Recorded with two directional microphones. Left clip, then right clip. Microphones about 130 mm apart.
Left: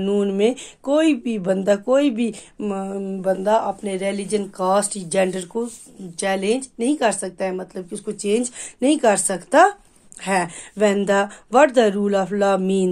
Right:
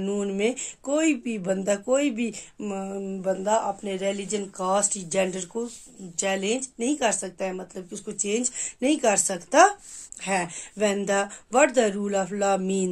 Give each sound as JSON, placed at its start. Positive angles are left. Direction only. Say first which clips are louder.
{"t": 0.0, "sound": "speech", "louder": "left 7 dB", "side_deg": 35}